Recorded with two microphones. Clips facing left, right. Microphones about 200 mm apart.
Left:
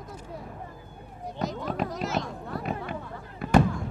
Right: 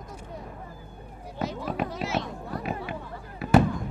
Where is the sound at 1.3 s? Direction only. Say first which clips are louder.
Even; centre (ahead or behind).